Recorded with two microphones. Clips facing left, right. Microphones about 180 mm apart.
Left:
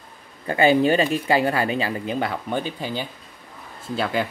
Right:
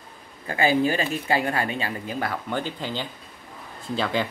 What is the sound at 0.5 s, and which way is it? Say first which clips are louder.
Speech: left 4 dB; 30° left (ahead or behind).